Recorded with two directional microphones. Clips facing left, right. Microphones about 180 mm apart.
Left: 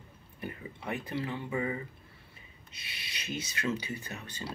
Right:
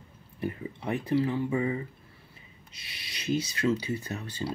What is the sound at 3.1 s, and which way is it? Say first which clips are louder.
Speech: right 9 dB; 30° right (ahead or behind).